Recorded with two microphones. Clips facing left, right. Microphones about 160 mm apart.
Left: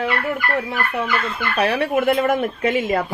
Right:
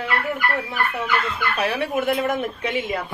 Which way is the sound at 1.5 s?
60° left (ahead or behind).